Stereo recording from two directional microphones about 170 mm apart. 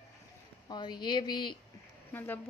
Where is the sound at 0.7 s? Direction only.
25° left (ahead or behind).